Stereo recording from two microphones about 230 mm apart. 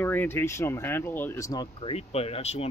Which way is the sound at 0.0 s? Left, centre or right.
Centre.